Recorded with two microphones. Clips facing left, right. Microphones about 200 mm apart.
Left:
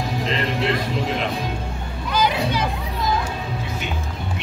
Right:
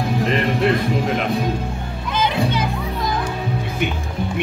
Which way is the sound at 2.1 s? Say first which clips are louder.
Right 1 dB; 25° right (ahead or behind).